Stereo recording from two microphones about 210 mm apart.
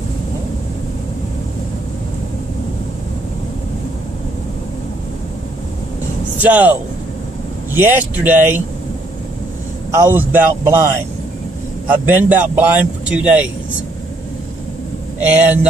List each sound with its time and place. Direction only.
6.4 s a man's voice: 5° right (ahead or behind)
9.8 s a man's voice: 10° right (ahead or behind)
15.1 s a man's voice: 5° right (ahead or behind)